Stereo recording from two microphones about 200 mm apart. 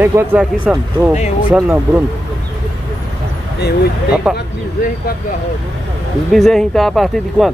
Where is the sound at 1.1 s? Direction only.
35° left (ahead or behind).